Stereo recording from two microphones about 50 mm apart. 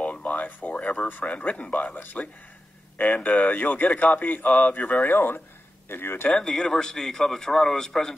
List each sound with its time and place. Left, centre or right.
0.0 s a sound: left
1.3 s speech: left
6.2 s speech: centre